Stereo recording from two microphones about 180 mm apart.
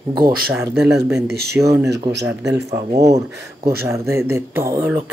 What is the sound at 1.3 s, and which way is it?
Speech, 60° right (ahead or behind).